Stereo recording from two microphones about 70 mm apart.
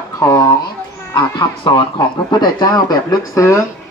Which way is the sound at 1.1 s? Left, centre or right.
Left.